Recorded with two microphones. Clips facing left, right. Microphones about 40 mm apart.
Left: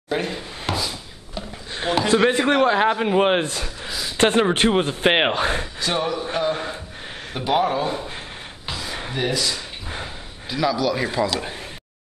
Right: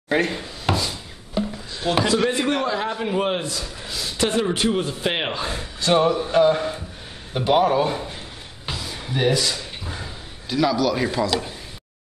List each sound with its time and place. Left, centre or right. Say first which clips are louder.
0.3 s a sound: right 2 dB; centre
1.7 s a sound: left 4 dB; left
2.0 s speech: left 6 dB; left
5.9 s music: right 6 dB; centre
6.5 s speech: right 3 dB; centre
7.3 s a man's voice: right 3 dB; centre
9.1 s a man's voice: right 3 dB; centre